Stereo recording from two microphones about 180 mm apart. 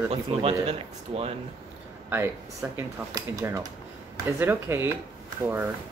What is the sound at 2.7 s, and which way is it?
Speech, 15° right (ahead or behind).